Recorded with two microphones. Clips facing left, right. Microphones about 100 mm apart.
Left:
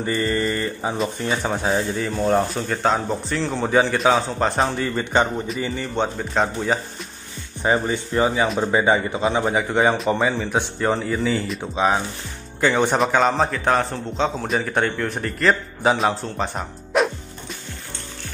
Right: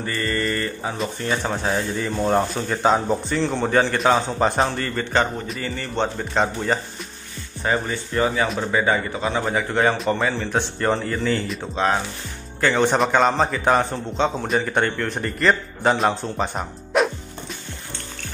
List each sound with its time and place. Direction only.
0.0 s a man's voice: 15° left (ahead or behind)
7.6 s a man's voice: 15° left (ahead or behind)
8.7 s a man's voice: 20° left (ahead or behind); by 17.1 s centre (ahead or behind)